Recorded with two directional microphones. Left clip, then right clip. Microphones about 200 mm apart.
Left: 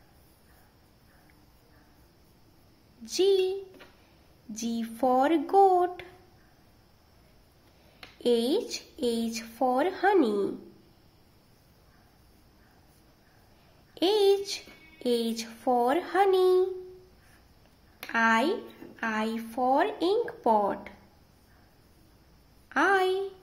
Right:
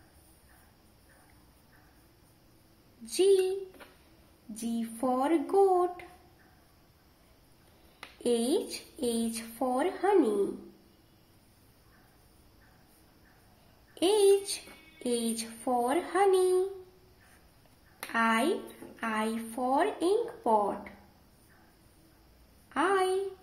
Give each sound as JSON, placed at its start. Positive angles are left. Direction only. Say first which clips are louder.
{"t": 3.1, "sound": "a woman's voice", "louder": "left 1 dB", "side_deg": 20}
{"t": 4.6, "sound": "speech", "louder": "left 4 dB", "side_deg": 30}
{"t": 8.2, "sound": "a woman's voice", "louder": "left 3 dB", "side_deg": 20}
{"t": 13.9, "sound": "a woman's voice", "louder": "left 1 dB", "side_deg": 20}
{"t": 18.1, "sound": "a woman's voice", "louder": "left 3 dB", "side_deg": 20}
{"t": 22.7, "sound": "a woman's voice", "louder": "left 3 dB", "side_deg": 30}